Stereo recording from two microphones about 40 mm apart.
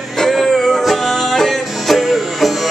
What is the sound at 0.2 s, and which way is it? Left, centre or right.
Music, centre.